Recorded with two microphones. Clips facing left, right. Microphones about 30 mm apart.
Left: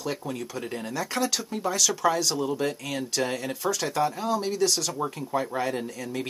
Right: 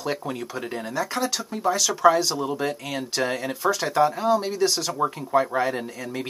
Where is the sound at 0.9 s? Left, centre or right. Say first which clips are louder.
Right 2 dB; centre.